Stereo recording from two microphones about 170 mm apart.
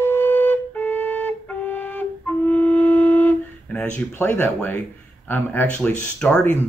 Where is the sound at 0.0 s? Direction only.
10° left (ahead or behind).